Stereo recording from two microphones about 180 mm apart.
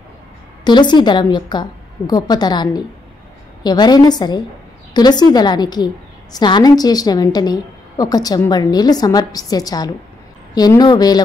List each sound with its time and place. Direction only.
0.7 s a woman's voice: 25° left (ahead or behind)